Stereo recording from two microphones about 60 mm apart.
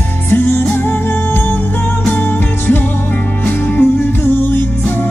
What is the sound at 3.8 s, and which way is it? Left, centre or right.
Music, left.